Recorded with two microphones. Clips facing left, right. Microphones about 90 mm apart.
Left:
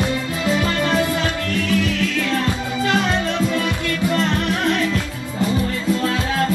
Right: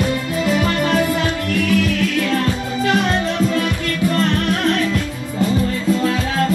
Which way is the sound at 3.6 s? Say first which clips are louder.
Right 1 dB; 20° left (ahead or behind).